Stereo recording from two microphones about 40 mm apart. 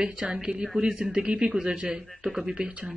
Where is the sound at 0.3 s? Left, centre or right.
Right.